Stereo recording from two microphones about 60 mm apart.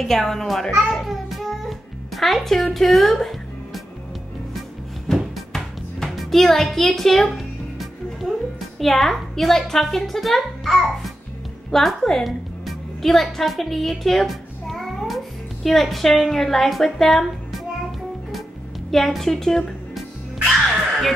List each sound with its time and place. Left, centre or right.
0.0 s a child's voice: centre
0.8 s music: centre
5.1 s music: centre
8.2 s a woman's voice: centre
18.9 s a woman's voice: centre